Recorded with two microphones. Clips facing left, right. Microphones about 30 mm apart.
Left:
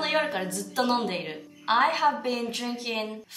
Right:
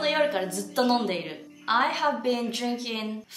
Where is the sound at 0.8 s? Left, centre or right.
Centre.